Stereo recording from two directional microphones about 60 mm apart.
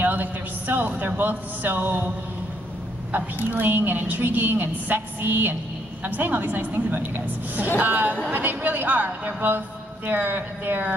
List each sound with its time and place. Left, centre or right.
0.0 s a woman's voice: right
3.5 s a woman's voice: right